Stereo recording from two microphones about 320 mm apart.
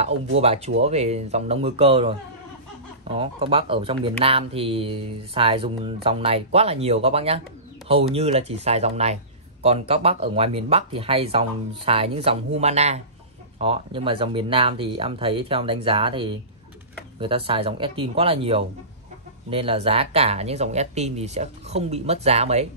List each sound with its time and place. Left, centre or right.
0.7 s speech: centre
3.2 s speech: centre